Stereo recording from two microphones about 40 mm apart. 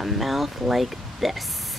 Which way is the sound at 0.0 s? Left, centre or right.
Centre.